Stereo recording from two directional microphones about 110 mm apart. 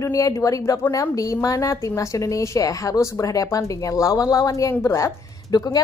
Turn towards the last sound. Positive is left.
turn(degrees=35)  # may be behind; listen again after turning